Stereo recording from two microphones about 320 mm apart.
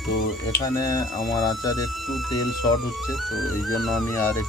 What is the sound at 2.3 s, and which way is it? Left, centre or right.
Speech, left.